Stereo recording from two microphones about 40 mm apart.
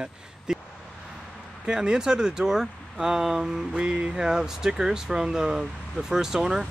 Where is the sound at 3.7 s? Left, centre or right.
Right.